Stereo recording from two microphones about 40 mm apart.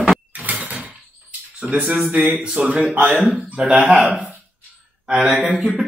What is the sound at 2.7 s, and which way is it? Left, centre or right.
Speech, right.